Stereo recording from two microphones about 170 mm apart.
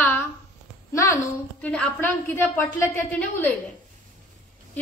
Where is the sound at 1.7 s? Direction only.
5° left (ahead or behind).